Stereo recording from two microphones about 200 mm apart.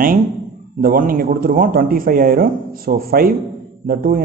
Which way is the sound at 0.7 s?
45° right (ahead or behind).